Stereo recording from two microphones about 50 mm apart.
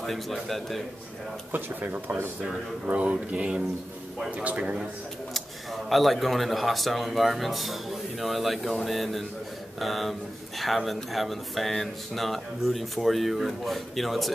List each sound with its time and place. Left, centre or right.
0.0 s speech: centre
1.5 s speech: right
2.9 s speech: right
5.9 s speech: centre